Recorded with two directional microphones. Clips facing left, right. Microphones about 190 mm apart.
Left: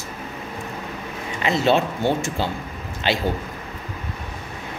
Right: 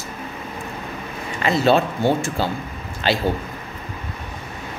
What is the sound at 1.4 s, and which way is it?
Speech, 20° left (ahead or behind).